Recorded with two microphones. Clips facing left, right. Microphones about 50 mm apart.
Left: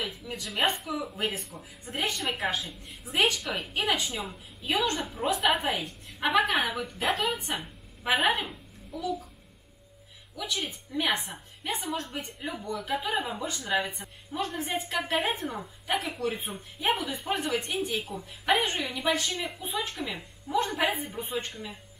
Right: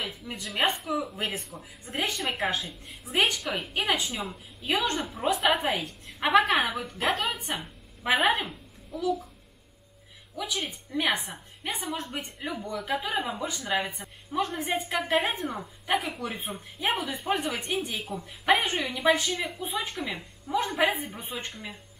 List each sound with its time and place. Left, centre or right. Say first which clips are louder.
0.0 s a woman's voice: even; centre
0.5 s a woman's voice: right 1 dB; centre
4.6 s a woman's voice: even; right
4.9 s a woman's voice: right 1 dB; centre
6.2 s a woman's voice: right 3 dB; centre
10.3 s a woman's voice: right 1 dB; centre